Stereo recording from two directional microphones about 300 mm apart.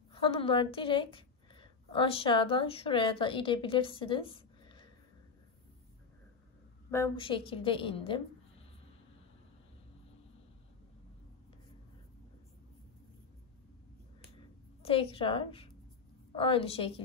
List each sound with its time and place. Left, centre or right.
0.1 s a woman's voice: centre
6.9 s a woman's voice: centre
14.8 s a woman's voice: centre